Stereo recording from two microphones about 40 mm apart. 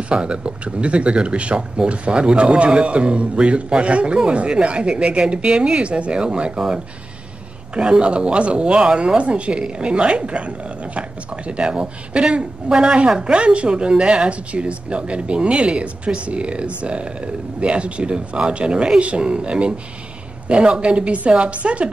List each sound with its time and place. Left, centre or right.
0.1 s speech: right
7.7 s speech: right